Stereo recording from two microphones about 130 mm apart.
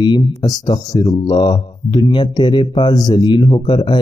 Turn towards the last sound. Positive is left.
turn(degrees=35)  # may be behind; listen again after turning